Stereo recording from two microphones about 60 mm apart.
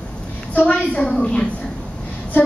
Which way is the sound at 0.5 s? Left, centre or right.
Left.